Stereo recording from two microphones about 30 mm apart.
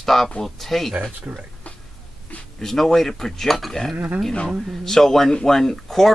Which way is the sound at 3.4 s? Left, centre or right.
Centre.